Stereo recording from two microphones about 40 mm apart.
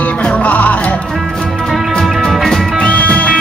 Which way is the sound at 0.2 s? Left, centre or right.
Left.